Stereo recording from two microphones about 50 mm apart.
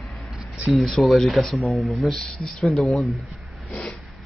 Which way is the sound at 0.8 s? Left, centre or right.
Centre.